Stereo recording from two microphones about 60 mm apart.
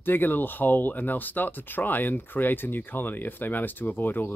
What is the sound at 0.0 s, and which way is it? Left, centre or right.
Speech, left.